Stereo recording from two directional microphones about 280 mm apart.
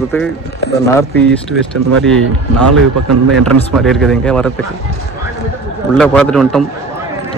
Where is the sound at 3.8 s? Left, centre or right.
Centre.